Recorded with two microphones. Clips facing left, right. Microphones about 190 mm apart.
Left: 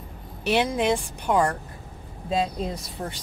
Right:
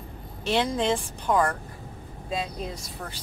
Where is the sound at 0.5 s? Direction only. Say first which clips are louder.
Left 2 dB; 15° left (ahead or behind).